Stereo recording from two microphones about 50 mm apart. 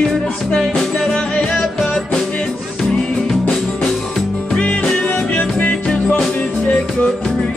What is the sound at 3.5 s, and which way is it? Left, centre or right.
Music, centre.